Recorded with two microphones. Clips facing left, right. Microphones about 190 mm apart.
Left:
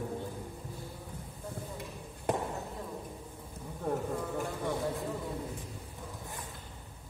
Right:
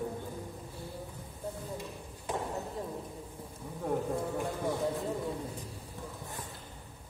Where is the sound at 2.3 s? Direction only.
60° left (ahead or behind).